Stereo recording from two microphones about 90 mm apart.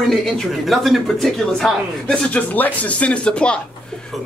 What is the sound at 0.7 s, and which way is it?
Speech, centre (ahead or behind).